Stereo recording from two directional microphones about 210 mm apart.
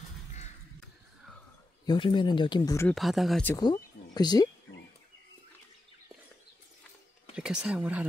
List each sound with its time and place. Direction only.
1.9 s speech: 20° left (ahead or behind)
2.9 s speech: centre (ahead or behind)
3.5 s speech: 20° left (ahead or behind)
7.3 s speech: 5° right (ahead or behind)